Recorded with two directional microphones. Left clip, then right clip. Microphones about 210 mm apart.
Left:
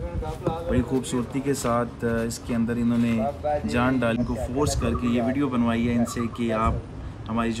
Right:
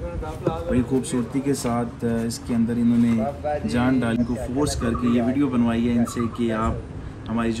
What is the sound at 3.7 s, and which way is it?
Speech, centre (ahead or behind).